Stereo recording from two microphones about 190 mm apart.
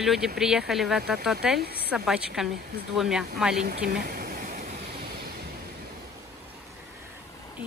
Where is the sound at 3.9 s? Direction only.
55° right (ahead or behind).